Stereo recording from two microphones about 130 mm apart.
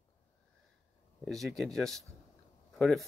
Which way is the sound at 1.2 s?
Centre (ahead or behind).